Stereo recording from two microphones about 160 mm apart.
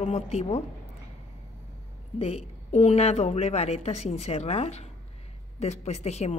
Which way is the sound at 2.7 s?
45° left (ahead or behind).